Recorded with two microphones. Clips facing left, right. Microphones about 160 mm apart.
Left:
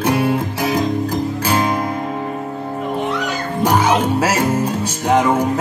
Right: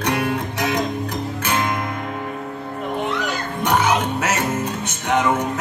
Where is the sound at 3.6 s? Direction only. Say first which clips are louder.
Left 3 dB; 30° left (ahead or behind).